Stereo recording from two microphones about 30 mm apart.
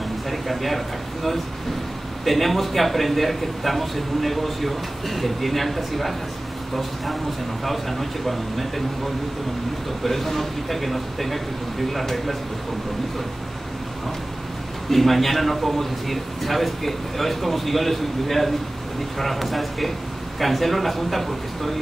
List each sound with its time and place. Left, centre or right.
0.3 s a man's voice: centre
10.0 s a man's voice: centre
14.9 s a man's voice: centre